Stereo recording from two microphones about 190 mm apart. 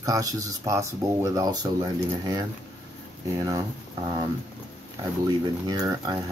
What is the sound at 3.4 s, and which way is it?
Speech, 20° right (ahead or behind).